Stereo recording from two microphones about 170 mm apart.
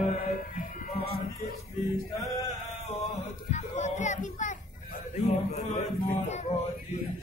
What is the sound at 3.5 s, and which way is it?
Speech, 45° left (ahead or behind).